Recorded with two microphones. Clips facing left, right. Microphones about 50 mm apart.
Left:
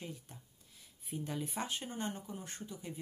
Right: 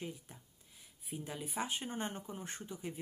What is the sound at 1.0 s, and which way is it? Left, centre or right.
Speech, centre.